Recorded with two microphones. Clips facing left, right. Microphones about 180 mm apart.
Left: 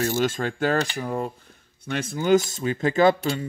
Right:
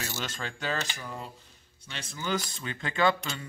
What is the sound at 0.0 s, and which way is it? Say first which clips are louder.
Speech: left 13 dB; 50° left (ahead or behind).